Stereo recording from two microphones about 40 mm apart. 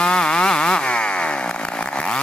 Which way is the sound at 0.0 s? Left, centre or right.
Centre.